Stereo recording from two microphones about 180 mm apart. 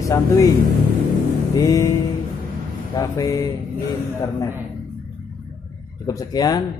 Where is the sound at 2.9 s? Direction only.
20° left (ahead or behind).